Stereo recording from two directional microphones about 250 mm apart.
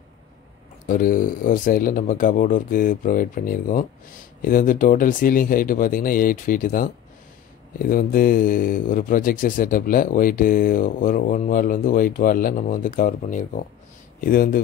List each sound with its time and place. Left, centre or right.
0.8 s speech: left